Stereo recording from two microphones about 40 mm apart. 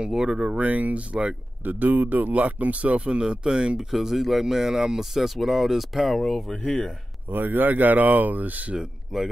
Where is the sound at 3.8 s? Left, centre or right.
Centre.